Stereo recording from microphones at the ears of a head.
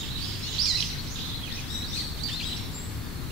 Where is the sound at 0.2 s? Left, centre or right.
Right.